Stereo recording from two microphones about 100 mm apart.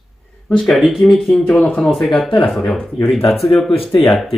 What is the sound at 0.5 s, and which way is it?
Speech, centre (ahead or behind).